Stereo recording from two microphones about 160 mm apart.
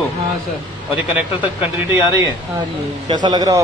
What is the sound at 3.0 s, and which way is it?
Speech, 25° right (ahead or behind).